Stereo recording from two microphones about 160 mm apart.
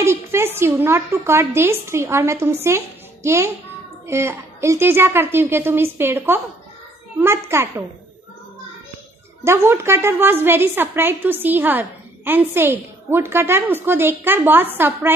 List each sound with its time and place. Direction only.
0.0 s a woman's voice: 15° right (ahead or behind)
9.4 s a woman's voice: 15° right (ahead or behind)